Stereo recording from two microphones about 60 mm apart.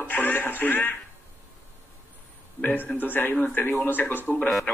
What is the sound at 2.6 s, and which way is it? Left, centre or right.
Speech, left.